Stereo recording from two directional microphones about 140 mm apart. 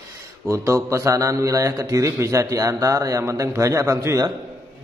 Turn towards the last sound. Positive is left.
turn(degrees=-25)  # may be behind; listen again after turning